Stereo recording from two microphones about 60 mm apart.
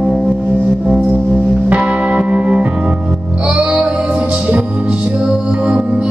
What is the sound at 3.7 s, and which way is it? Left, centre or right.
Music, right.